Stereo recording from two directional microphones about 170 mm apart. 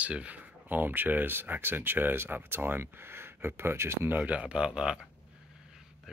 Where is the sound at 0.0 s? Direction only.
10° right (ahead or behind).